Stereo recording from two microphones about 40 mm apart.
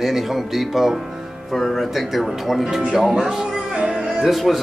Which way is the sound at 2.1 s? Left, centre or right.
Centre.